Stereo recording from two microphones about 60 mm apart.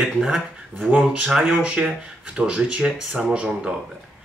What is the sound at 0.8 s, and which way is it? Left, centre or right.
Speech, right.